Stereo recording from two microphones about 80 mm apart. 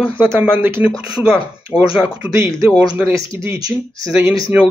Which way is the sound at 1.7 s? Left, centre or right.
Centre.